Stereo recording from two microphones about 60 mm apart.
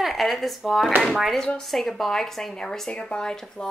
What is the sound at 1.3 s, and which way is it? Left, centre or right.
A woman's voice, centre.